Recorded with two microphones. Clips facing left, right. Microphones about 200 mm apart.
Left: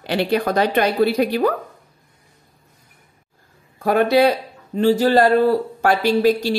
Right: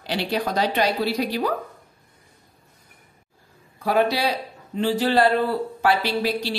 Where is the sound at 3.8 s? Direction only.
50° left (ahead or behind).